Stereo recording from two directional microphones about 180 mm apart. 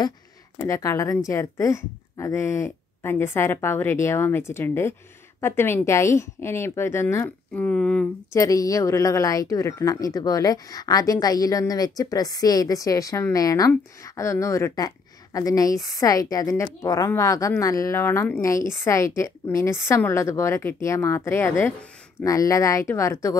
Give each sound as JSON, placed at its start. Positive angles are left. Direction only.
{"t": 0.6, "sound": "a woman's voice", "side_deg": 15}